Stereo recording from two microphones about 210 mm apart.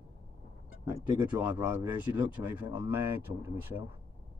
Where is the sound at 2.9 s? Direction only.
10° right (ahead or behind).